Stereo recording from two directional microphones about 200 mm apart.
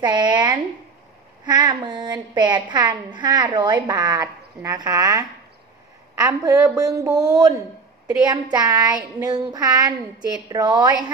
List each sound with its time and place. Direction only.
0.0 s a woman's voice: 20° right (ahead or behind)